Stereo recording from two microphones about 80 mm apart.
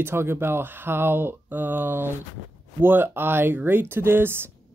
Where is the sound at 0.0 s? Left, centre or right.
Right.